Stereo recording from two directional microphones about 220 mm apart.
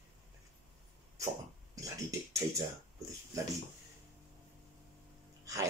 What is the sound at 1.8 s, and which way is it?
Speech, 15° right (ahead or behind).